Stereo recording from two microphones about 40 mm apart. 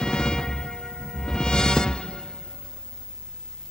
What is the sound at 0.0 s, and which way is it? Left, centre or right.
Music, centre.